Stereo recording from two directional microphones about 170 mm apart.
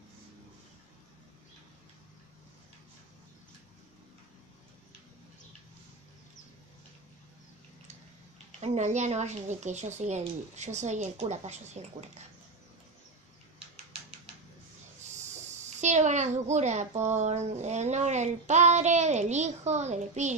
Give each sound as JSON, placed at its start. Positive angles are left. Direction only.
{"t": 8.5, "sound": "a woman's voice", "side_deg": -40}
{"t": 15.8, "sound": "a woman's voice", "side_deg": -45}